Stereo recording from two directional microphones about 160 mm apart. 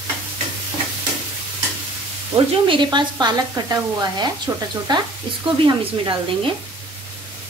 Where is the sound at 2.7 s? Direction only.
30° right (ahead or behind).